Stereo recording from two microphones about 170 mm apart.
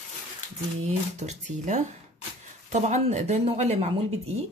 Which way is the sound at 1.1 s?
45° right (ahead or behind).